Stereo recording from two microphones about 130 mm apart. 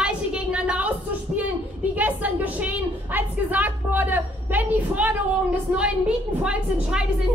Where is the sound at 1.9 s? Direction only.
15° right (ahead or behind).